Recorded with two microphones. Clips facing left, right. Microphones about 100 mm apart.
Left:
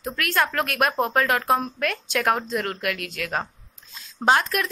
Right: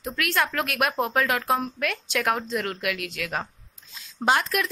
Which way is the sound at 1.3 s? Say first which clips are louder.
Left 3 dB; 30° left (ahead or behind).